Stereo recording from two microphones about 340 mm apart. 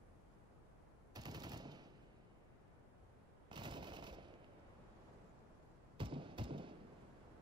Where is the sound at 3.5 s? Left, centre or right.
Centre.